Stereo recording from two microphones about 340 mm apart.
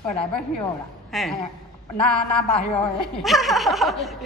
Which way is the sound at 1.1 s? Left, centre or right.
Centre.